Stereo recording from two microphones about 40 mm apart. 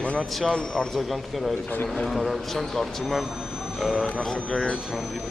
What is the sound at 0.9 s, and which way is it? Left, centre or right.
A man's voice, centre.